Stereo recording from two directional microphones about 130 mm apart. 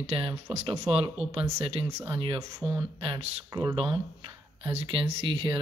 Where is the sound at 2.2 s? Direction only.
40° right (ahead or behind).